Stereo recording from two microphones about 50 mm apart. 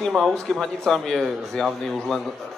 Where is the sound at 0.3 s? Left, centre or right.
Centre.